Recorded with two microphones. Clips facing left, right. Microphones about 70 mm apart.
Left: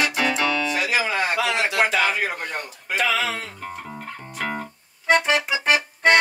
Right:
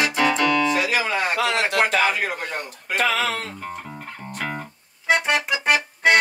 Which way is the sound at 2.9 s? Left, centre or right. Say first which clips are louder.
Right 1 dB; right.